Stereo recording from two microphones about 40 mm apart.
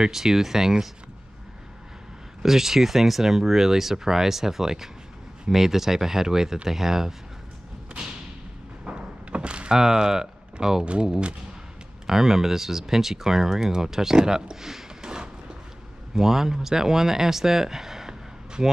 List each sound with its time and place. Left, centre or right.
0.0 s speech: centre
2.4 s speech: centre
8.8 s door: right
9.8 s speech: centre
11.1 s speech: right
12.1 s speech: centre
16.2 s speech: centre